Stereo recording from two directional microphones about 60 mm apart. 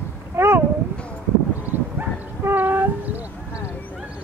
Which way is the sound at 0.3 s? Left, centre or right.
Right.